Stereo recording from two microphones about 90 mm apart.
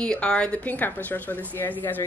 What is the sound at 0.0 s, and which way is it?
A woman's voice, 10° left (ahead or behind).